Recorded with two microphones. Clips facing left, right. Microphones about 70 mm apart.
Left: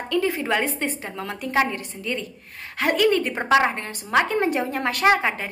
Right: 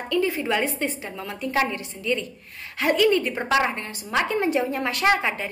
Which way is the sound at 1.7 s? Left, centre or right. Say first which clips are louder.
Right 2 dB; left.